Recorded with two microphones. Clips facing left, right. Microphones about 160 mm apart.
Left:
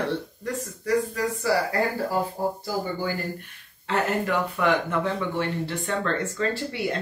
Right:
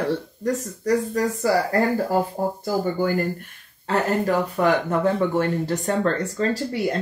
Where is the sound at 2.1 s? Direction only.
50° right (ahead or behind).